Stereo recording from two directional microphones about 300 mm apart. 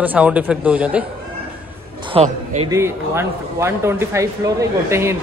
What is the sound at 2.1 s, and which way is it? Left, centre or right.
Speech, right.